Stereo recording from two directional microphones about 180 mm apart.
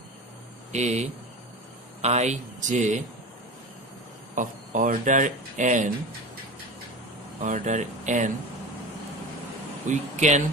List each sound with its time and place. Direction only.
0.7 s speech: 40° right (ahead or behind)
4.4 s speech: 45° right (ahead or behind)
7.4 s speech: 40° right (ahead or behind)
9.8 s speech: 40° right (ahead or behind)